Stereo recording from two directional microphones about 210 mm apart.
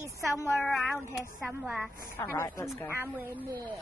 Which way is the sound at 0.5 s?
Centre (ahead or behind).